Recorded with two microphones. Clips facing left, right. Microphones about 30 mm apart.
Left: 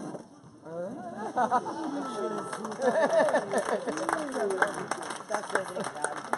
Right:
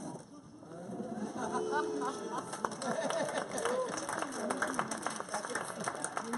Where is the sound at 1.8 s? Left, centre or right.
Left.